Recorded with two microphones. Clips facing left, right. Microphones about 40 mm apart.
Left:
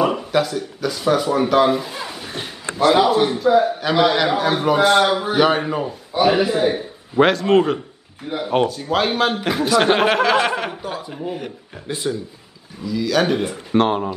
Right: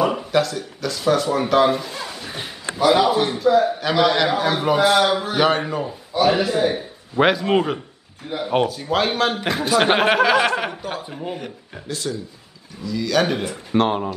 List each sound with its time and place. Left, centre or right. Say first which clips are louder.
0.0 s a man's voice: left 1 dB; centre
11.9 s speech: left 3 dB; centre
12.8 s a man's voice: left 1 dB; centre